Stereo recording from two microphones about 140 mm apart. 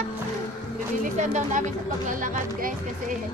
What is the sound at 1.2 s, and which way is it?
Speech, 60° right (ahead or behind).